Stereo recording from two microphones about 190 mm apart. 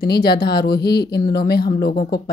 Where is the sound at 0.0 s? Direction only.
55° left (ahead or behind).